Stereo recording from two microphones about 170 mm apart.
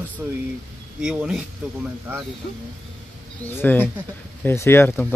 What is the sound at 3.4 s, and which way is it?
Speech, 10° left (ahead or behind).